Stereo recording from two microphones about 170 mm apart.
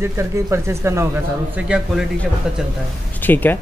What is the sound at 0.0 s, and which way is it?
Speech, 15° right (ahead or behind).